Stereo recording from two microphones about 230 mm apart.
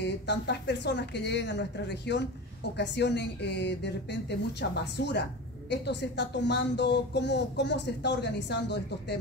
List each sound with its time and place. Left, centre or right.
0.0 s speech: left